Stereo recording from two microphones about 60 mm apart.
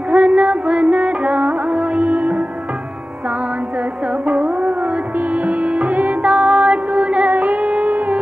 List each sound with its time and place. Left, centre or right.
0.1 s music: right
4.1 s music: right